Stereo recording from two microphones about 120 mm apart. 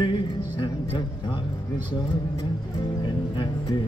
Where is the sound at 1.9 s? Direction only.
40° left (ahead or behind).